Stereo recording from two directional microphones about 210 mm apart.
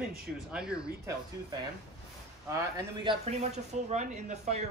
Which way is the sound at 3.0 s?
30° right (ahead or behind).